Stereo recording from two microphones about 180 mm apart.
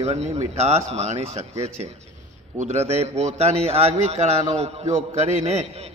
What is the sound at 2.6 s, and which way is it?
A man's voice, 35° right (ahead or behind).